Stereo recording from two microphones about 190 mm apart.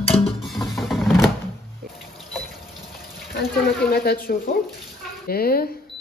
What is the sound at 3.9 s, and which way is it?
Speech, 55° left (ahead or behind).